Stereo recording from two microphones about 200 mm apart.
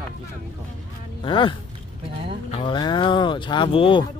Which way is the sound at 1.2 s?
25° left (ahead or behind).